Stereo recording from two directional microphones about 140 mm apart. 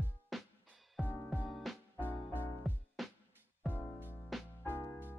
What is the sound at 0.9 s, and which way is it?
Music, 10° left (ahead or behind).